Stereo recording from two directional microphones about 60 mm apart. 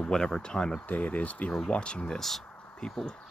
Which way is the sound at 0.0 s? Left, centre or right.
Centre.